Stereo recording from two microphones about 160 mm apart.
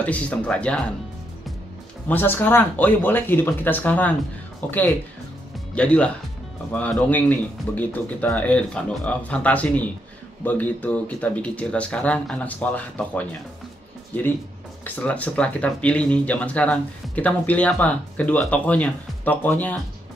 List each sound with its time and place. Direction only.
0.0 s speech: 10° left (ahead or behind)
2.0 s speech: 10° left (ahead or behind)
15.0 s speech: 10° left (ahead or behind)